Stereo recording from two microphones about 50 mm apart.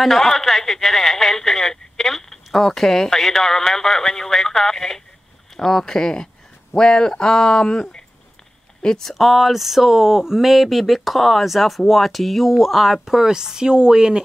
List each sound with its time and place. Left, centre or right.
0.0 s speech: centre